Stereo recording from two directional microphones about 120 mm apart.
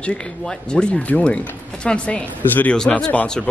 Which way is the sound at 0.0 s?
10° left (ahead or behind).